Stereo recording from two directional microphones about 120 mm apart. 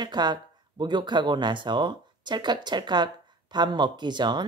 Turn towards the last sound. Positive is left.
turn(degrees=-40)  # may be behind; listen again after turning